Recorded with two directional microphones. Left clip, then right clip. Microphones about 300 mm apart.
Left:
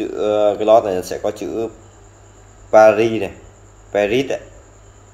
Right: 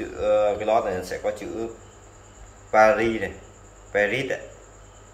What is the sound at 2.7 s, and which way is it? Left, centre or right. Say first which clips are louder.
Speech: left 7 dB; left.